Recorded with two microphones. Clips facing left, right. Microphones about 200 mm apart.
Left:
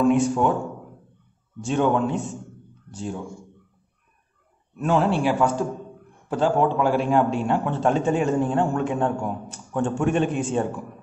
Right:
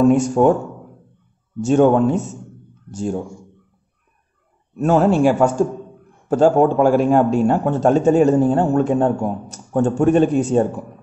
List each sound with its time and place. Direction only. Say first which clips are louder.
0.0 s speech: right 6 dB; 45° right (ahead or behind)
1.6 s speech: right 8 dB; 45° right (ahead or behind)
4.7 s a man's voice: right 6 dB; 45° right (ahead or behind)